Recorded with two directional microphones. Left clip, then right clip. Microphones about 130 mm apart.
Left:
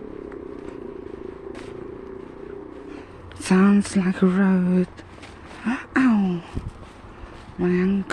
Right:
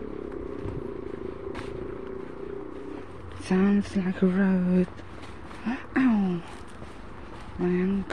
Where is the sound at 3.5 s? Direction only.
50° left (ahead or behind); by 4.9 s 35° left (ahead or behind).